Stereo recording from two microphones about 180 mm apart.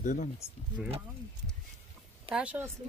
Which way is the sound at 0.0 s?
45° left (ahead or behind).